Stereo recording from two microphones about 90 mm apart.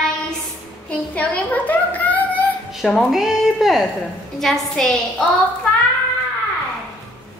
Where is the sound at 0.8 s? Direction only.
15° left (ahead or behind).